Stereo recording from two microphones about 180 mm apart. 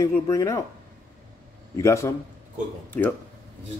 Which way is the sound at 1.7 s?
15° left (ahead or behind).